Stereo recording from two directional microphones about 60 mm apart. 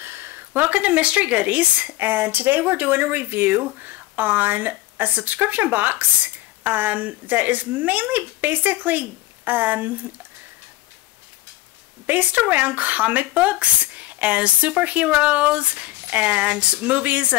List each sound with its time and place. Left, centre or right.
0.0 s speech: right
12.1 s speech: right